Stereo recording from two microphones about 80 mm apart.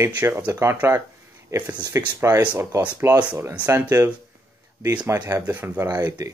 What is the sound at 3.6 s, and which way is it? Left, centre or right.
Speech, right.